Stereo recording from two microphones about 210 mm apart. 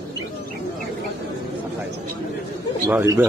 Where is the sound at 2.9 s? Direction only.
15° right (ahead or behind).